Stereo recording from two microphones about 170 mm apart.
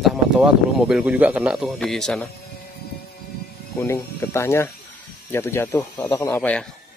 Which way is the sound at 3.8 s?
15° left (ahead or behind).